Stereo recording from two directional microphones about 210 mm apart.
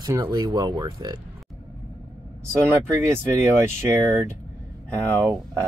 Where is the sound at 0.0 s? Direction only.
20° right (ahead or behind).